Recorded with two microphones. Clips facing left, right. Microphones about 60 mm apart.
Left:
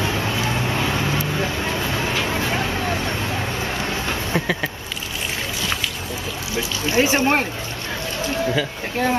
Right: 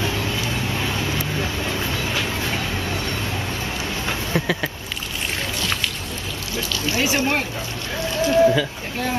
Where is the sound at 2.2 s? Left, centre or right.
Left.